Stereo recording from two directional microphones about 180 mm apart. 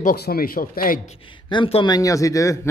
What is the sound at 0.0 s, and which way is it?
Speech, 60° left (ahead or behind).